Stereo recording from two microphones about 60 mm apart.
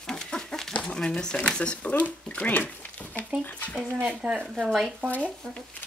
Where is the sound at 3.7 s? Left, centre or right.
Centre.